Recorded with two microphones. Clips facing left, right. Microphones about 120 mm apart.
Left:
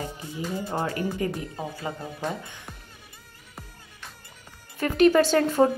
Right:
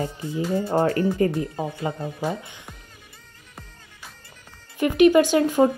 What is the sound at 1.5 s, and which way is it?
Speech, 25° right (ahead or behind).